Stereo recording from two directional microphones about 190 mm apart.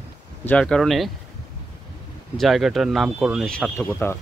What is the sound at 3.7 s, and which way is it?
Speech, 10° left (ahead or behind).